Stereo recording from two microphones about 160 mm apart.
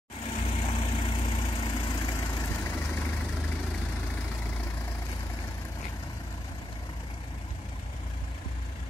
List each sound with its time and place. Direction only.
0.3 s vehicle: 40° left (ahead or behind); by 3.0 s 15° left (ahead or behind)